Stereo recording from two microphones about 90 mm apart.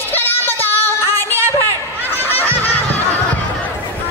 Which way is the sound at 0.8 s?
20° left (ahead or behind).